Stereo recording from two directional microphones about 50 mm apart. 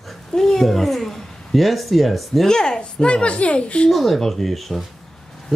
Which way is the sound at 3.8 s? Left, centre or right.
Centre.